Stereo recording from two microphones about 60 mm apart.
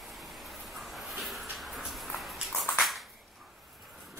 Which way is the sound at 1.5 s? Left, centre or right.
Centre.